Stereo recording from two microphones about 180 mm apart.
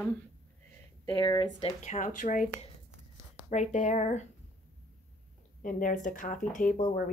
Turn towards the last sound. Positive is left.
turn(degrees=45)  # may be behind; listen again after turning